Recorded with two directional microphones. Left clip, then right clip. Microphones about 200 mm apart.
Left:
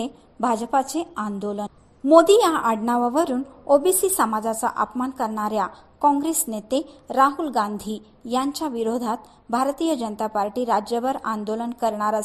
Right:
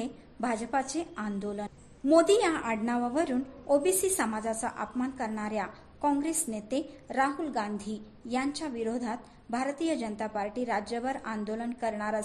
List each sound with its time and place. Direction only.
0.0 s a woman's voice: 25° left (ahead or behind)